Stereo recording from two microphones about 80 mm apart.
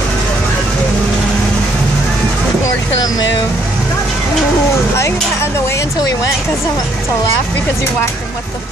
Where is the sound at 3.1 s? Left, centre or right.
Left.